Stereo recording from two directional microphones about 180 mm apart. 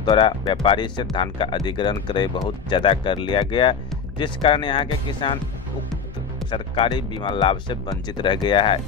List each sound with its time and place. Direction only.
0.0 s speech: 25° left (ahead or behind)
6.5 s speech: 30° left (ahead or behind)